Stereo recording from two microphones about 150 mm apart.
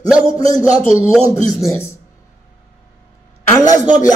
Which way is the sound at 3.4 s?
20° left (ahead or behind).